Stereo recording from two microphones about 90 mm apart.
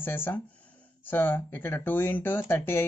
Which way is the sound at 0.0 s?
25° left (ahead or behind).